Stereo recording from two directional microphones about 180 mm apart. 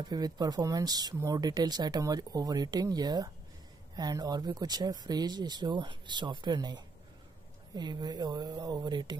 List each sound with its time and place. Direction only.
0.1 s speech: 20° right (ahead or behind)